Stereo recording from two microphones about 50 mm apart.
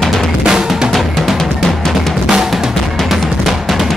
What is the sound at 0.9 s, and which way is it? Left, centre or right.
Drum, centre.